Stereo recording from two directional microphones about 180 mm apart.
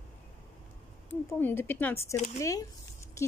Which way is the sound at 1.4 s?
10° left (ahead or behind).